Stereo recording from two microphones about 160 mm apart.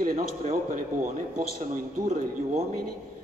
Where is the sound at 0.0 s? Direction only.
55° right (ahead or behind).